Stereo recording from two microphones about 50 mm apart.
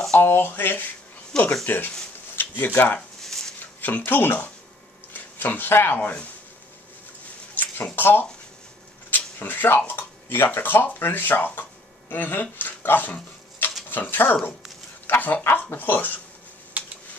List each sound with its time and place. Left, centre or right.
0.2 s speech: left
1.3 s speech: centre
2.3 s speech: left
3.2 s chopping: centre
3.8 s speech: left
5.1 s a sound: left
5.9 s speech: left
7.5 s a sound: left
7.9 s speech: left
13.6 s a sound: left
14.1 s speech: left
16.8 s a sound: right